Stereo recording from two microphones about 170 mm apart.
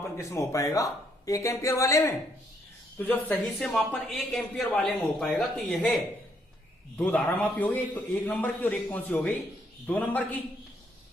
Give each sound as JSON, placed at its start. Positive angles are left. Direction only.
{"t": 0.2, "sound": "a man's voice", "side_deg": 20}
{"t": 7.0, "sound": "a man's voice", "side_deg": 10}